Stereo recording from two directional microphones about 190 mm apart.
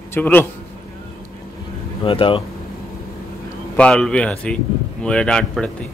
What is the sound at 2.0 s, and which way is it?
Speech, 30° left (ahead or behind).